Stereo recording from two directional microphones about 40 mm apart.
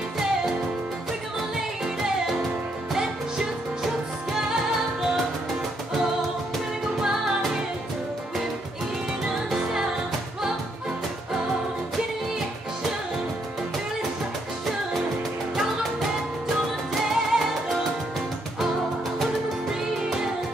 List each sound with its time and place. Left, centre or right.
7.0 s music: centre
9.5 s music: centre
16.9 s music: centre